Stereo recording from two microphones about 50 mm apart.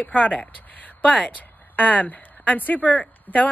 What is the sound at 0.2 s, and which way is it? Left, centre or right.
A woman's voice, left.